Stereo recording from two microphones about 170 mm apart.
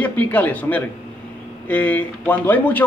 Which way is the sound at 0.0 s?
10° left (ahead or behind).